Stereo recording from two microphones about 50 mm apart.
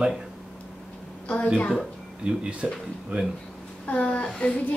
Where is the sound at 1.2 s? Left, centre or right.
Left.